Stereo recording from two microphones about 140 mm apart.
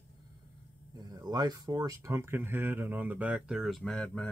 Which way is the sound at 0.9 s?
30° right (ahead or behind).